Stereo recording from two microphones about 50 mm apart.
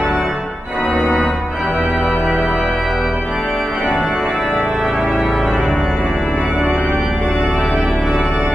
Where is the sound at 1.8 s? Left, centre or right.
Right.